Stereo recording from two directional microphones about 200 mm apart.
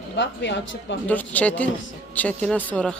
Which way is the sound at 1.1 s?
10° left (ahead or behind).